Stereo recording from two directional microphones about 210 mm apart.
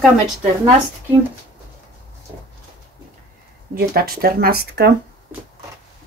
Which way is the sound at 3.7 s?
45° right (ahead or behind).